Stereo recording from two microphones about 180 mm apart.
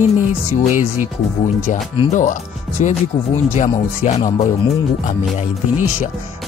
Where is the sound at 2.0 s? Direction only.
45° left (ahead or behind).